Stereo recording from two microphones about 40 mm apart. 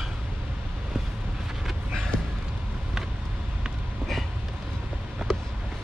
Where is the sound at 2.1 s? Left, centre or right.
Left.